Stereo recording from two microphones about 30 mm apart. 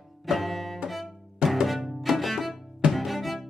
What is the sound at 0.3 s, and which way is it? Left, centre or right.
Music, centre.